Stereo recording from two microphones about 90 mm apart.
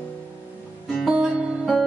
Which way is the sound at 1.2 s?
15° right (ahead or behind).